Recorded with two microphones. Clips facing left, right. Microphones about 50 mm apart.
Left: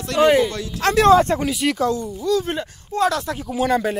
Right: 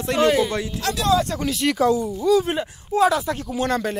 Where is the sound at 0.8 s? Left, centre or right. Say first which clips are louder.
Left 8 dB; left.